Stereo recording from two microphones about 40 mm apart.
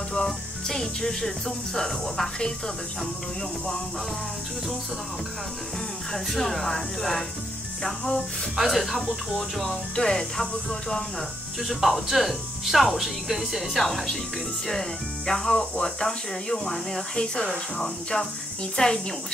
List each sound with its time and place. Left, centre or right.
0.1 s speech: centre
6.1 s speech: centre
7.8 s speech: centre
8.5 s speech: centre
9.9 s speech: centre
11.6 s speech: centre